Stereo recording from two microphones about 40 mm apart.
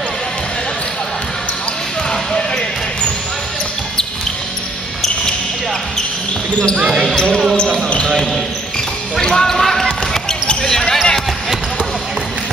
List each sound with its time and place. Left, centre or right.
2.0 s basketball bounce: left
6.8 s speech: centre
9.1 s basketball bounce: centre